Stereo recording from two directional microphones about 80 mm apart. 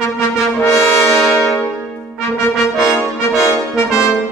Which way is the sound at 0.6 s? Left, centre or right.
Left.